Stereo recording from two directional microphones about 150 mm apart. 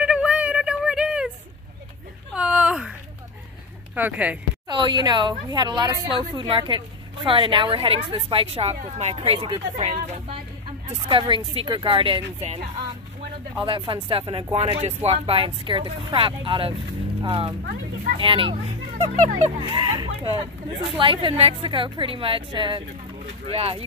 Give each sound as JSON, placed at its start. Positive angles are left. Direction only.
{"t": 0.0, "sound": "a sound", "side_deg": -5}
{"t": 2.3, "sound": "a sound", "side_deg": -5}
{"t": 3.9, "sound": "speech", "side_deg": -10}
{"t": 4.6, "sound": "a woman's voice", "side_deg": -30}
{"t": 13.7, "sound": "a woman's voice", "side_deg": -35}
{"t": 19.1, "sound": "speech", "side_deg": -55}
{"t": 19.7, "sound": "a woman's voice", "side_deg": -35}